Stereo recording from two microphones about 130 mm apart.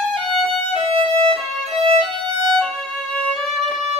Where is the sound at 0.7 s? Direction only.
50° right (ahead or behind).